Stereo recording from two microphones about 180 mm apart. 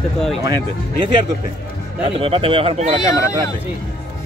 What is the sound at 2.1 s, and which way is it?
Speech, 30° right (ahead or behind).